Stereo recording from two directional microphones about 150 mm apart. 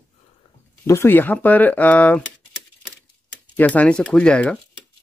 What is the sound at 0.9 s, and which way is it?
Speech, 15° left (ahead or behind).